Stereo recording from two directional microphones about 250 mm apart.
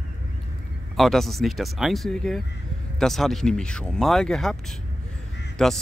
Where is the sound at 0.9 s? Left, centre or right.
Centre.